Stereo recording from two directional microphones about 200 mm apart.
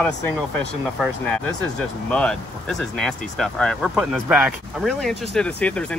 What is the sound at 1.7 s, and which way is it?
Speech, 5° left (ahead or behind).